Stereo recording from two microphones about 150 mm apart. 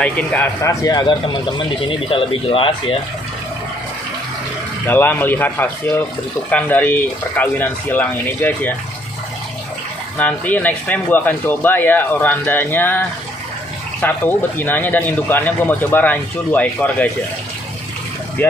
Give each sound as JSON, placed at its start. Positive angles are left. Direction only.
{"t": 0.0, "sound": "a man's voice", "side_deg": 10}
{"t": 4.8, "sound": "speech", "side_deg": 15}
{"t": 10.1, "sound": "speech", "side_deg": 10}
{"t": 14.0, "sound": "speech", "side_deg": 15}
{"t": 18.4, "sound": "speech", "side_deg": 15}